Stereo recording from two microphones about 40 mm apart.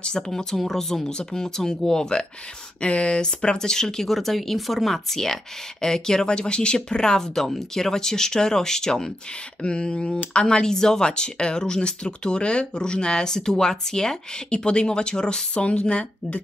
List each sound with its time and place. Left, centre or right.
0.3 s speech: centre
2.8 s speech: left
9.6 s speech: left